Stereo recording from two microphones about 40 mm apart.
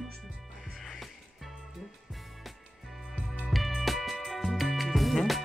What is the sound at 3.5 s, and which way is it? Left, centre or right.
Music, centre.